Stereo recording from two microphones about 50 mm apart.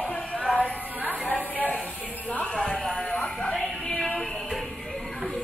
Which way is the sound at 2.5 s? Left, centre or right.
Centre.